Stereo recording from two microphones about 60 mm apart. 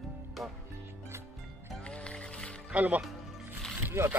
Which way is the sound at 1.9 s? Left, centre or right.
Centre.